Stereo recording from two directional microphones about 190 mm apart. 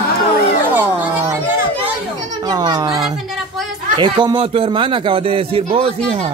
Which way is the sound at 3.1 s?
Centre (ahead or behind).